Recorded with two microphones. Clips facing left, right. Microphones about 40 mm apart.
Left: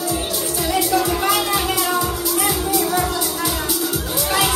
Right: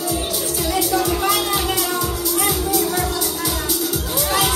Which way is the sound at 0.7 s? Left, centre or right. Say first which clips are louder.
Left 1 dB; centre.